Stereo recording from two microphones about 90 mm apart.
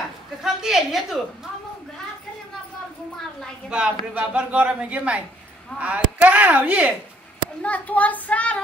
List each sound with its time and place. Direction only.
0.4 s a woman's voice: 5° right (ahead or behind)
3.7 s speech: 10° right (ahead or behind)
7.6 s a child's voice: 15° left (ahead or behind)